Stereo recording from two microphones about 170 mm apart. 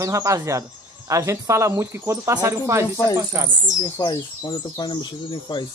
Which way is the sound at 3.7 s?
50° right (ahead or behind).